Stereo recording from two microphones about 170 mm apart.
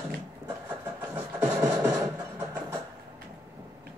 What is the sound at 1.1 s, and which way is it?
Music, 10° right (ahead or behind).